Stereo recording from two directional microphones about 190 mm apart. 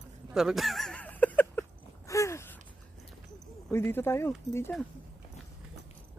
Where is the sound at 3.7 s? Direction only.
10° left (ahead or behind).